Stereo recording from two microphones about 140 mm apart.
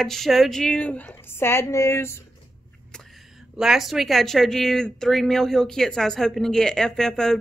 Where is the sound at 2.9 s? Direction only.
Centre (ahead or behind).